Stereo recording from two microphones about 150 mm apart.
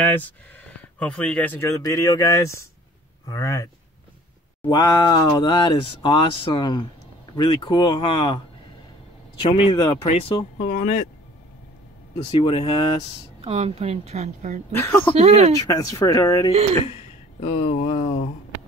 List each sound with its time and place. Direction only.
0.0 s speech: 10° left (ahead or behind); by 8.4 s 30° left (ahead or behind)
9.4 s speech: 35° left (ahead or behind)
10.7 s speech: 50° left (ahead or behind)
12.3 s speech: 35° left (ahead or behind)
13.4 s speech: 40° right (ahead or behind)
14.7 s speech: 15° left (ahead or behind)
15.1 s speech: 45° right (ahead or behind)
15.6 s speech: 25° left (ahead or behind)
17.4 s speech: 45° left (ahead or behind)